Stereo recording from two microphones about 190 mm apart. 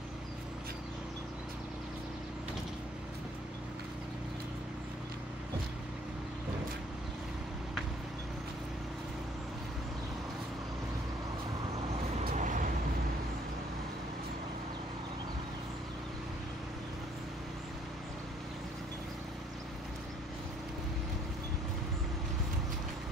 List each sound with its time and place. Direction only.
12.3 s vehicle: 45° right (ahead or behind)